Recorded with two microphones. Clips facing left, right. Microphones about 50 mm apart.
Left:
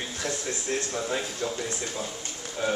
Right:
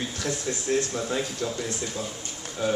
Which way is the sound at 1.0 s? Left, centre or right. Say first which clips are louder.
Right 1 dB; centre.